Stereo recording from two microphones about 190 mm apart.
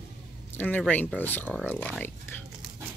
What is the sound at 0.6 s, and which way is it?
Speech, 10° left (ahead or behind).